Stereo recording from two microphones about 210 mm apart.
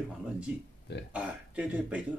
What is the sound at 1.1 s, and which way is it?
Speech, 5° right (ahead or behind).